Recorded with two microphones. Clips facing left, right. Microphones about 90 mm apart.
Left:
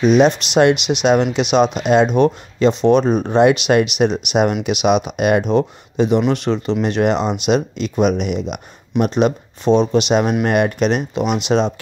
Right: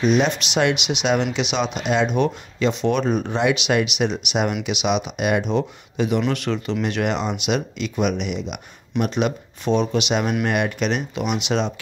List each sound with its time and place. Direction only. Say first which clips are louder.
0.0 s speech: left 6 dB; 40° left (ahead or behind)
5.9 s speech: left 6 dB; 30° left (ahead or behind)